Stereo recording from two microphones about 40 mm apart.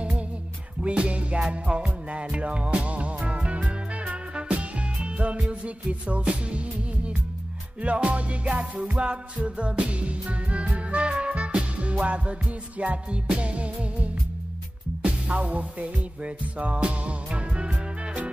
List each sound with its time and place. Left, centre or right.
0.8 s music: right
15.3 s music: right